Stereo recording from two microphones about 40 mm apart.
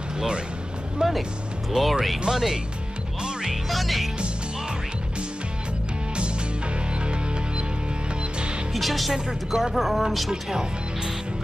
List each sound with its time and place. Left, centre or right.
1.0 s speech: centre
1.8 s speech: centre
2.2 s speech: centre
3.2 s music: right
3.6 s music: centre
8.7 s speech: centre
10.3 s speech: centre